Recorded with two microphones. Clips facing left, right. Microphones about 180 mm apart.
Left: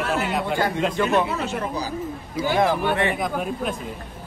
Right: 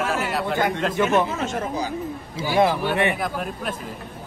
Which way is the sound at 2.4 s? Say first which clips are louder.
Left 4 dB; 25° right (ahead or behind).